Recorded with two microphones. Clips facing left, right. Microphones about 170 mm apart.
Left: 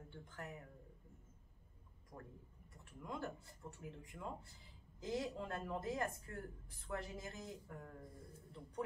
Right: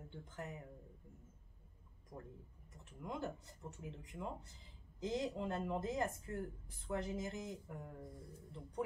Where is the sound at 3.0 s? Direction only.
20° right (ahead or behind).